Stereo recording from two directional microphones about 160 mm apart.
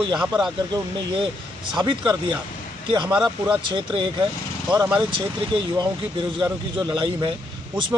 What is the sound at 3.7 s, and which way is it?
Speech, 30° right (ahead or behind).